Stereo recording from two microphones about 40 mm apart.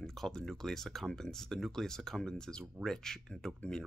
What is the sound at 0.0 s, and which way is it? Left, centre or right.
Speech, centre.